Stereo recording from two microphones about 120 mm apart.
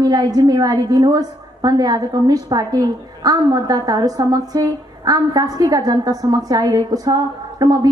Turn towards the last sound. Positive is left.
turn(degrees=-30)  # may be behind; listen again after turning